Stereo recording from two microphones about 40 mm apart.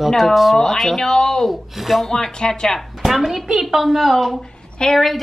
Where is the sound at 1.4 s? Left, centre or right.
Centre.